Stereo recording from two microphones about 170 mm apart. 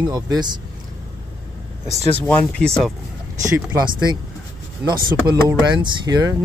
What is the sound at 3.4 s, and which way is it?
Speech, 20° right (ahead or behind).